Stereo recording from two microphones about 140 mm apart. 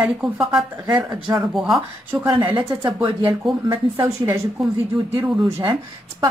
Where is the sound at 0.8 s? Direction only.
25° right (ahead or behind).